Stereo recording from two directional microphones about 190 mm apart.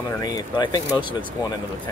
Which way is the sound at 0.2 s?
20° left (ahead or behind).